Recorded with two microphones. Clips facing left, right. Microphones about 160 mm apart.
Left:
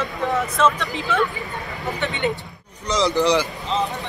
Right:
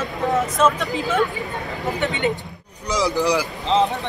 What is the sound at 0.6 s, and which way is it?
Speech, 40° right (ahead or behind).